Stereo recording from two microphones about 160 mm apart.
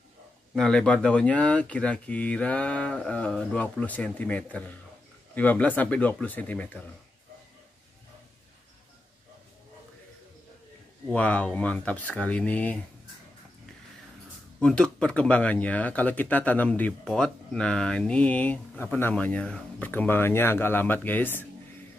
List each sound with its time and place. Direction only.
0.6 s speech: 5° left (ahead or behind)
11.1 s speech: 10° left (ahead or behind)
14.6 s speech: 5° left (ahead or behind)